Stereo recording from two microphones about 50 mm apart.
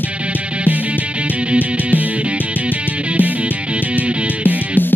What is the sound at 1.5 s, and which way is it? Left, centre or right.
Music, right.